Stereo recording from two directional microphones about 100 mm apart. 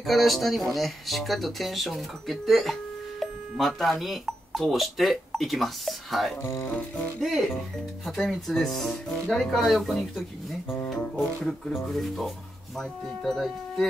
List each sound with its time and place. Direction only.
0.0 s speech: centre (ahead or behind)
6.4 s speech: 30° left (ahead or behind)
7.2 s speech: centre (ahead or behind)